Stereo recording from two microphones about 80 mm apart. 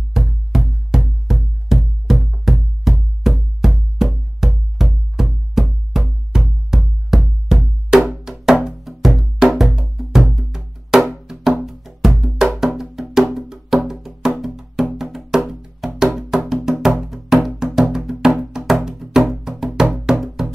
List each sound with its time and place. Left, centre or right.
0.1 s music: centre